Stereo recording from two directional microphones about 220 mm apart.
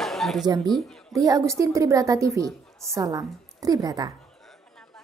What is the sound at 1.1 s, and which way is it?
A woman's voice, 15° right (ahead or behind).